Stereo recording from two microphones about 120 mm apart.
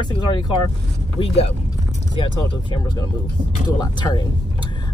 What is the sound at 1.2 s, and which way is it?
Speech, 60° left (ahead or behind).